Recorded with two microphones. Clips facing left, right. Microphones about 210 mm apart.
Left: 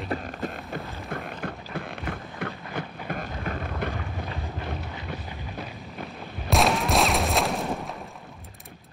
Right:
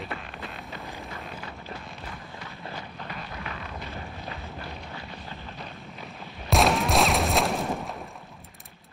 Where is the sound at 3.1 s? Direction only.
50° left (ahead or behind).